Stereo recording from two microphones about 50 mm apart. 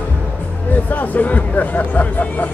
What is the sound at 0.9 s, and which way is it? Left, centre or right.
Speech, left.